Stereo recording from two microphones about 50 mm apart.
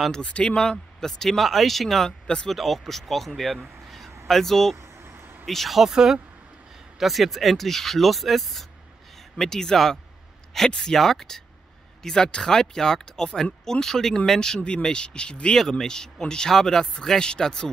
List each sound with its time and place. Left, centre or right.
0.1 s speech: left; by 2.1 s centre
2.2 s speech: centre
2.5 s speech: centre
3.8 s a sound: centre
4.3 s speech: centre
5.9 s speech: centre
7.0 s speech: centre